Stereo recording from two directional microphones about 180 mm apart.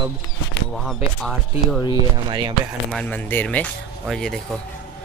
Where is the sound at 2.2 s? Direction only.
25° right (ahead or behind).